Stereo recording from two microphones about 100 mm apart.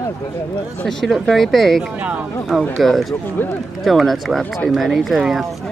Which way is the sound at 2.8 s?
Centre (ahead or behind).